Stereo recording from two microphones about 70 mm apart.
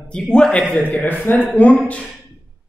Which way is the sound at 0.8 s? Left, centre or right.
Left.